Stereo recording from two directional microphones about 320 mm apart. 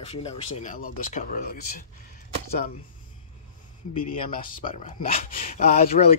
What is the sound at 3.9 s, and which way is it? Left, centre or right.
Speech, centre.